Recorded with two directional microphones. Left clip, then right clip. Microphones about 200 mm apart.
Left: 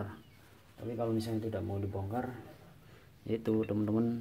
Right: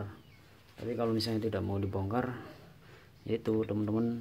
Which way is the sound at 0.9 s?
30° right (ahead or behind).